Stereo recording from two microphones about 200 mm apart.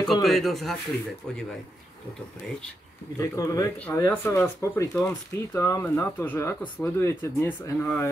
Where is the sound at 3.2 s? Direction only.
15° left (ahead or behind).